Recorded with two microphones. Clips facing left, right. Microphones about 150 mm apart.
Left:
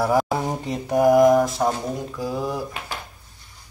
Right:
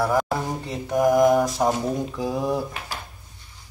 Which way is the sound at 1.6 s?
20° right (ahead or behind).